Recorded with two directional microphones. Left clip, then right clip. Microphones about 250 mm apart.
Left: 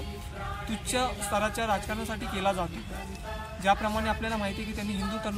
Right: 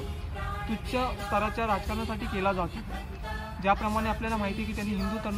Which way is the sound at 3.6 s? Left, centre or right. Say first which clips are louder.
Left 1 dB; centre.